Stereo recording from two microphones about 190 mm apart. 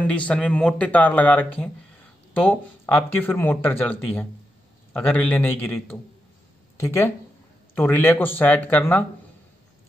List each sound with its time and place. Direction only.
0.0 s speech: 5° left (ahead or behind)